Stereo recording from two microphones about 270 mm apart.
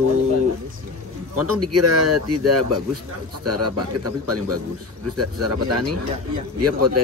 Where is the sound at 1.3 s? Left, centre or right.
Right.